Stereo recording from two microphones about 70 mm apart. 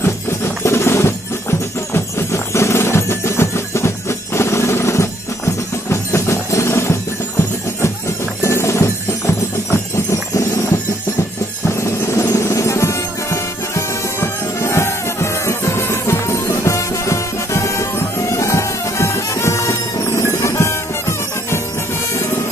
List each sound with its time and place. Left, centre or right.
0.0 s music: left
8.4 s music: left